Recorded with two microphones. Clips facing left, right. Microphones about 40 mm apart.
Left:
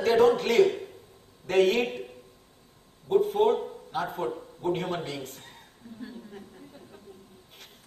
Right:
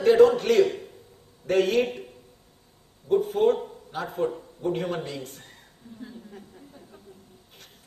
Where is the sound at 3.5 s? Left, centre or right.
Left.